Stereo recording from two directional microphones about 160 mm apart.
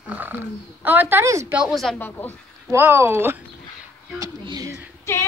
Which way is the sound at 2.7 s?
15° right (ahead or behind).